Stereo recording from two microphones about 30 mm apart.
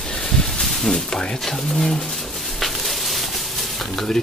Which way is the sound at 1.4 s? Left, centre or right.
Centre.